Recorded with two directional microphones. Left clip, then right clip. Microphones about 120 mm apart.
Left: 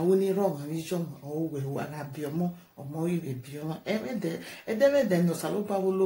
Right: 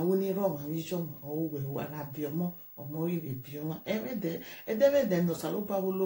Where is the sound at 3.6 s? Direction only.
20° left (ahead or behind).